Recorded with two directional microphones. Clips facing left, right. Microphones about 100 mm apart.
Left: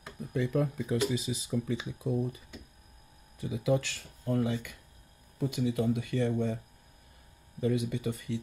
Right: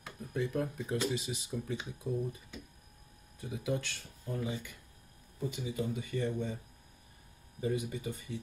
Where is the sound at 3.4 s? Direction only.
90° left; by 6.5 s 65° left (ahead or behind).